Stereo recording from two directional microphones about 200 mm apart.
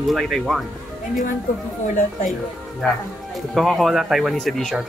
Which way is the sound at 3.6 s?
Centre (ahead or behind).